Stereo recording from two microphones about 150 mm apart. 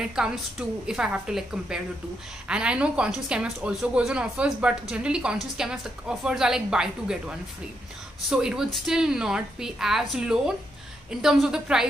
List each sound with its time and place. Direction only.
0.0 s speech: 5° right (ahead or behind)